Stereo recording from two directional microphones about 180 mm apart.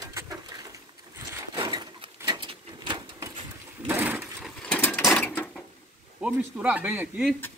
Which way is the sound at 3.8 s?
10° right (ahead or behind).